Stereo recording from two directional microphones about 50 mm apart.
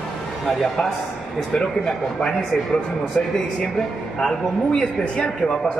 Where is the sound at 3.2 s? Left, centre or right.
Centre.